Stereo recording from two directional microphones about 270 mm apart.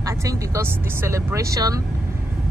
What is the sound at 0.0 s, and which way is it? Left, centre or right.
Speech, centre.